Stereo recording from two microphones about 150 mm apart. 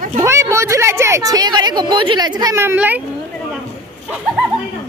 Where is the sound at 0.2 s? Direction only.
20° right (ahead or behind).